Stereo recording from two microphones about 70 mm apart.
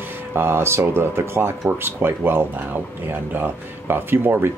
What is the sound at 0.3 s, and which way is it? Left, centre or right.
Speech, right.